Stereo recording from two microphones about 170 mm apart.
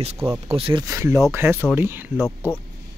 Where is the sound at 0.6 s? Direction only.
30° right (ahead or behind).